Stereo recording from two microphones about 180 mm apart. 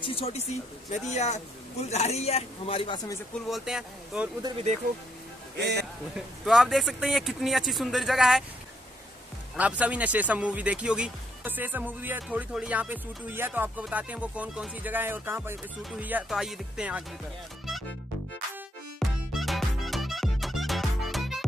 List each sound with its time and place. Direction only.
0.0 s a man's voice: 30° left (ahead or behind)
3.4 s speech: centre (ahead or behind)
4.4 s speech: 20° right (ahead or behind)
5.6 s speech: 65° right (ahead or behind)
6.1 s speech: centre (ahead or behind)
9.6 s speech: 10° right (ahead or behind)
18.9 s music: centre (ahead or behind)